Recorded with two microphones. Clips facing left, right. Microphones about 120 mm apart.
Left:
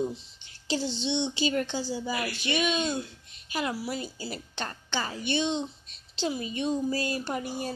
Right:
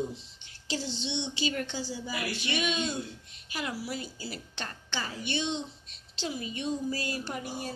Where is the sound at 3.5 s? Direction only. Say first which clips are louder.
Left 4 dB; 30° left (ahead or behind).